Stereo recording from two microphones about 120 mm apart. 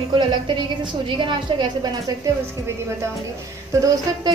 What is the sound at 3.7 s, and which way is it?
Speech, 30° right (ahead or behind).